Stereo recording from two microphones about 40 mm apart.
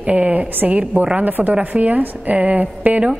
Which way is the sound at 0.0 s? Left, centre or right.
Right.